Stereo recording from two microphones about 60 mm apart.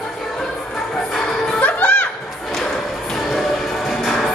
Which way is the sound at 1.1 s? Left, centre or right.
Centre.